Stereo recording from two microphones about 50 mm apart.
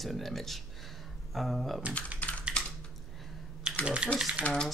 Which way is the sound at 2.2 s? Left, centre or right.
Left.